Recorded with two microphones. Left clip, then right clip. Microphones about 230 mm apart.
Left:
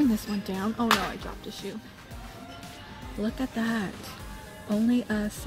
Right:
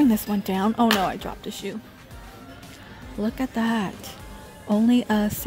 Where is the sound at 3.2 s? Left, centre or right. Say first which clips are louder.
Right 5 dB; centre.